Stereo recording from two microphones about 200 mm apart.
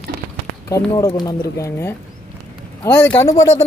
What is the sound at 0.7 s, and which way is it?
Speech, 15° left (ahead or behind).